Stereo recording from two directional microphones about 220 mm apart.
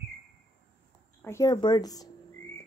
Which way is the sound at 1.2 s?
15° left (ahead or behind).